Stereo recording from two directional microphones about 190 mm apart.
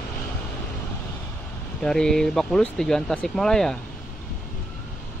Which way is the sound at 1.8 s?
5° left (ahead or behind).